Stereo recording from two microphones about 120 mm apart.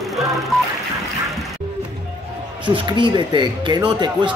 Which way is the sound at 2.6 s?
40° right (ahead or behind).